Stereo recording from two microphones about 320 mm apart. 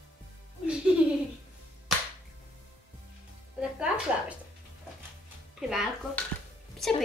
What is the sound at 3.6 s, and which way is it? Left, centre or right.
Music, centre.